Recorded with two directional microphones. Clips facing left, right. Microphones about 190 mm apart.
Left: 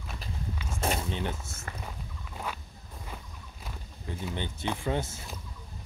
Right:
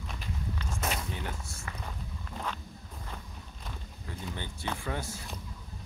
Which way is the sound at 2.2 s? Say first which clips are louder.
Even; 10° left (ahead or behind).